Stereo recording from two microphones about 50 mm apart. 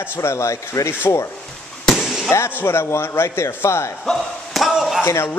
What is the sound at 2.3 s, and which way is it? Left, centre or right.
Speech, left.